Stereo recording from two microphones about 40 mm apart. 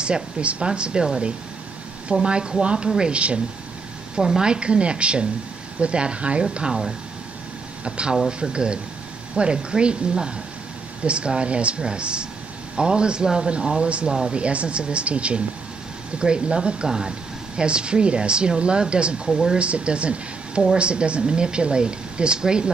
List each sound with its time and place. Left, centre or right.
0.0 s speech: right
4.1 s speech: centre
6.5 s speech: centre
19.6 s speech: right